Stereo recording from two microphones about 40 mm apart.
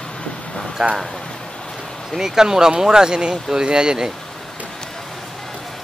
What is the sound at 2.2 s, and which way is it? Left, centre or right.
Speech, centre.